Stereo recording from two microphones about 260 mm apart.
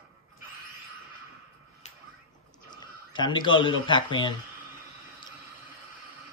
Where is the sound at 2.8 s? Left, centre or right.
Centre.